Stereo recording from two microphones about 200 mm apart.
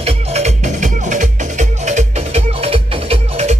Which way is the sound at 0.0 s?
30° right (ahead or behind).